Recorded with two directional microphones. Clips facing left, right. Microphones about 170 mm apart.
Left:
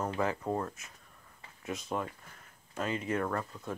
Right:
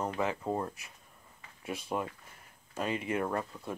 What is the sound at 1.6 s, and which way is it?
Speech, 30° right (ahead or behind).